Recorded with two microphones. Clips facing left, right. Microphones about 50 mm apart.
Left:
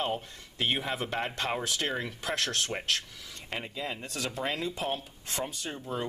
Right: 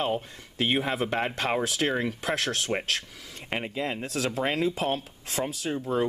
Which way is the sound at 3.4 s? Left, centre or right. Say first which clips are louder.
Right 6 dB; right.